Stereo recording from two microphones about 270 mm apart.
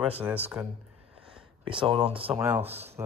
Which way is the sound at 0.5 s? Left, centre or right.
Centre.